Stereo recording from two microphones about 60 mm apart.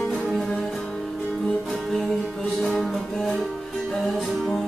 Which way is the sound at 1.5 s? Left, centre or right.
Centre.